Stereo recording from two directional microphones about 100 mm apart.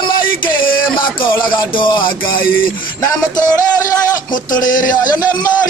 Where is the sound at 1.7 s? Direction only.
55° left (ahead or behind).